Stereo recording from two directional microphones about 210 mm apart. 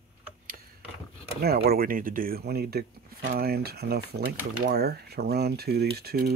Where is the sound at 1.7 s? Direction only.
45° right (ahead or behind).